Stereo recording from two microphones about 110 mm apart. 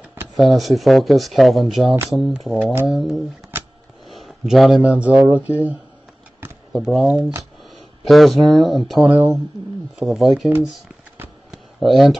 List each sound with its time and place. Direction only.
0.4 s speech: centre (ahead or behind)
6.7 s speech: centre (ahead or behind)
9.0 s speech: 15° right (ahead or behind)
9.9 s speech: 5° right (ahead or behind)
11.5 s a sound: centre (ahead or behind)